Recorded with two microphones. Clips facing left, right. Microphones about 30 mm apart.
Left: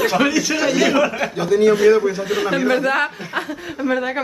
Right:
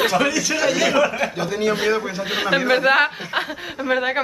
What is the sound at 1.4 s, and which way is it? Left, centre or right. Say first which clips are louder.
Speech: left 10 dB; centre.